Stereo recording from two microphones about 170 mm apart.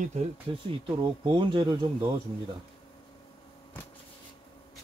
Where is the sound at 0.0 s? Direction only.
40° right (ahead or behind).